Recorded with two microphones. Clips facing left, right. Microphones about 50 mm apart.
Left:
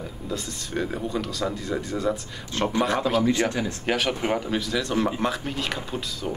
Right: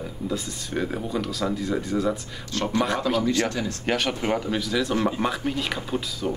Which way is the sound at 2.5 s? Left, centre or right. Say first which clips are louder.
Left 1 dB; centre.